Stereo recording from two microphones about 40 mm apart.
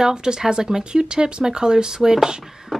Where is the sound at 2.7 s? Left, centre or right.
Centre.